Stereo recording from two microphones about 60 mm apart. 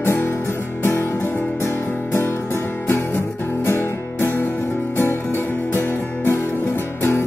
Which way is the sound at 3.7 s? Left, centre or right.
Left.